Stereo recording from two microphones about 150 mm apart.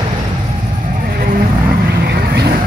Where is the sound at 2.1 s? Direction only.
90° right.